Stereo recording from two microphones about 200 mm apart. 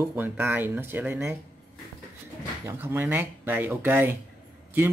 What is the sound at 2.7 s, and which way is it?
Speech, 10° right (ahead or behind).